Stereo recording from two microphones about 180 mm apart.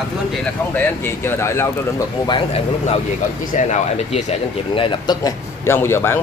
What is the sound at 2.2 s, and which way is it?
Speech, 25° left (ahead or behind).